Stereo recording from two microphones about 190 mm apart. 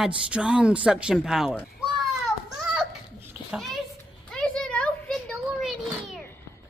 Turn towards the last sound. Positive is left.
turn(degrees=0)  # may be behind; listen again after turning